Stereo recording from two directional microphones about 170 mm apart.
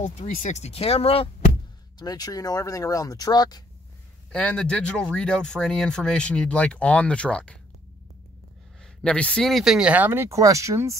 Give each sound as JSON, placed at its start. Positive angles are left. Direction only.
{"t": 0.3, "sound": "speech", "side_deg": 45}
{"t": 2.0, "sound": "speech", "side_deg": 25}
{"t": 4.3, "sound": "speech", "side_deg": 5}
{"t": 9.0, "sound": "speech", "side_deg": 5}